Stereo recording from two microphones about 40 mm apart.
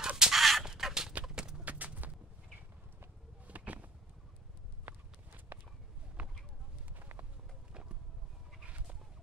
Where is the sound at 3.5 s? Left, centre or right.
Right.